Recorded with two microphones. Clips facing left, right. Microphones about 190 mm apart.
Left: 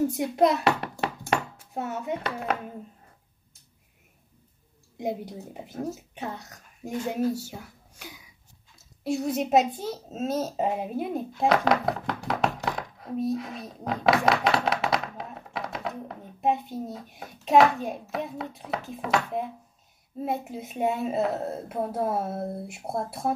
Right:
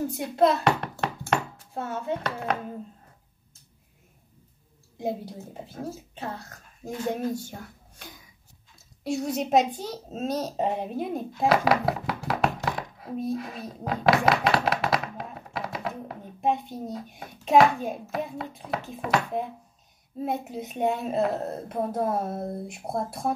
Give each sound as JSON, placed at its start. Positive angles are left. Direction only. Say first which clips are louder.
{"t": 0.0, "sound": "a child's voice", "louder": "left 1 dB", "side_deg": 20}
{"t": 1.2, "sound": "a sound", "louder": "right 1 dB", "side_deg": 15}
{"t": 4.9, "sound": "a woman's voice", "louder": "even", "side_deg": 20}